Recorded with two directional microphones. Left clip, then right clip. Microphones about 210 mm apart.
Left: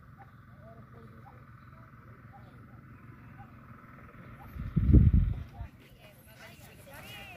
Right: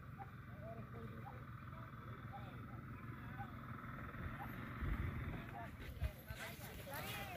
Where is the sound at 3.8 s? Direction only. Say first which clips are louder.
Right 1 dB; 35° left (ahead or behind).